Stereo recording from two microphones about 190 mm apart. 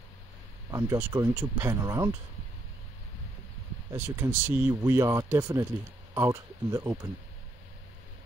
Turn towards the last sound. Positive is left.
turn(degrees=-15)  # may be behind; listen again after turning